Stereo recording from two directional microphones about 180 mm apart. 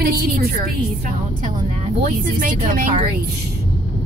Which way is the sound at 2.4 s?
50° right (ahead or behind).